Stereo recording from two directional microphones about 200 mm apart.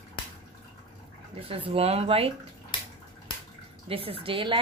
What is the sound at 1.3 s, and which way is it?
Speech, 30° right (ahead or behind).